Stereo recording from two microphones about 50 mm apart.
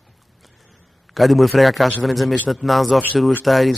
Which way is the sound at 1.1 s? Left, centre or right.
Centre.